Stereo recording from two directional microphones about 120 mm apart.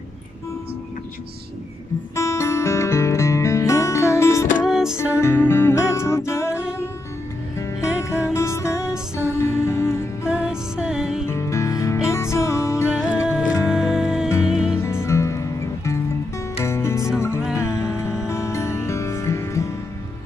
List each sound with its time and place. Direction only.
2.1 s music: 25° left (ahead or behind)
4.6 s music: 5° right (ahead or behind)
5.2 s music: 20° left (ahead or behind)
8.0 s music: 25° left (ahead or behind)
8.7 s music: 5° right (ahead or behind)
9.4 s music: 20° left (ahead or behind)
10.2 s music: 5° right (ahead or behind)
11.2 s music: 25° left (ahead or behind)
12.8 s music: 5° right (ahead or behind)
14.8 s music: 20° left (ahead or behind)